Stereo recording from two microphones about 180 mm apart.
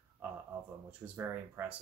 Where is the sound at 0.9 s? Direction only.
10° right (ahead or behind).